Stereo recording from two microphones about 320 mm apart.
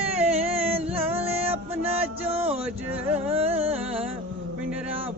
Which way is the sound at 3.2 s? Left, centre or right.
Centre.